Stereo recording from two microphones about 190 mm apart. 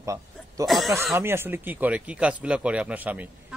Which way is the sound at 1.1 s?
10° right (ahead or behind).